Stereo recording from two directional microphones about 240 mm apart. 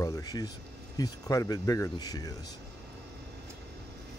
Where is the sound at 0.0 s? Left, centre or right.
Centre.